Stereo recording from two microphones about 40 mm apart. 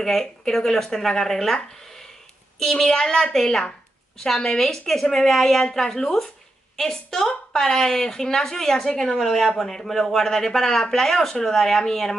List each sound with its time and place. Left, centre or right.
0.0 s a woman's voice: centre
2.6 s a woman's voice: centre
9.2 s a woman's voice: centre